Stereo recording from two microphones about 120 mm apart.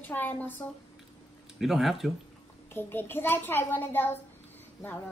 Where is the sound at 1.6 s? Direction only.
Centre (ahead or behind).